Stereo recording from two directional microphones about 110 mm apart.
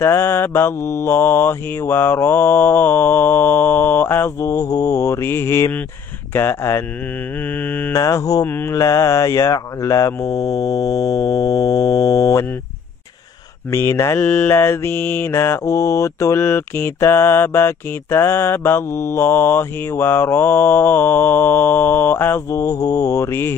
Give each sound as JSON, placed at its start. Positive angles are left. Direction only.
{"t": 0.0, "sound": "mantra", "side_deg": 25}
{"t": 8.0, "sound": "mantra", "side_deg": 30}
{"t": 8.5, "sound": "mantra", "side_deg": 20}
{"t": 13.7, "sound": "mantra", "side_deg": 25}
{"t": 14.2, "sound": "mantra", "side_deg": 10}
{"t": 14.5, "sound": "mantra", "side_deg": 20}